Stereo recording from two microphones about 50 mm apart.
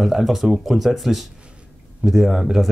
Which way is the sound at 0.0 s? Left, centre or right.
Centre.